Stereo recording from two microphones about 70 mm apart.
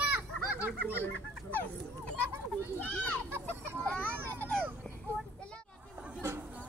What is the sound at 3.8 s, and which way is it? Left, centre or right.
Children playing, centre.